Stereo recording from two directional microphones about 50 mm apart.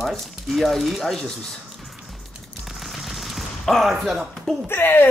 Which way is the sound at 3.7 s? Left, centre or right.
Centre.